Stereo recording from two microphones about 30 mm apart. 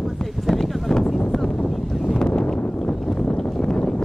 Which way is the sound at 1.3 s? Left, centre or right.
Left.